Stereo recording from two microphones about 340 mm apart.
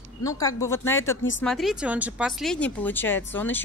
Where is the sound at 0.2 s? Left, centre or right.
Centre.